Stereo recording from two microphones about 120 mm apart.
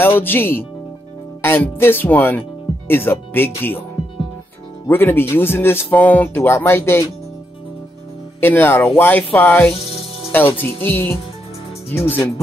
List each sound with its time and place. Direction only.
0.2 s speech: 15° left (ahead or behind)
4.8 s speech: 20° left (ahead or behind)
8.4 s speech: 20° left (ahead or behind)